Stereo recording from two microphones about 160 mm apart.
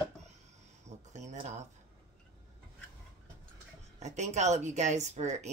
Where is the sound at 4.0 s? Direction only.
45° right (ahead or behind).